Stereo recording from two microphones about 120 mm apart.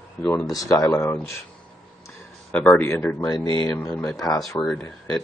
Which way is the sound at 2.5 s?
10° left (ahead or behind).